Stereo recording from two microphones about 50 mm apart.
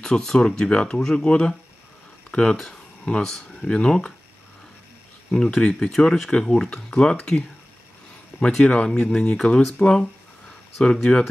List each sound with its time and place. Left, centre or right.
0.0 s speech: centre
5.3 s speech: centre
6.0 s speech: left
6.3 s speech: centre
8.6 s speech: left
9.4 s speech: centre